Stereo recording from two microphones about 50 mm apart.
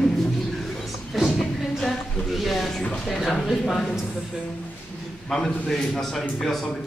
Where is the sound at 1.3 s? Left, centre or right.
Centre.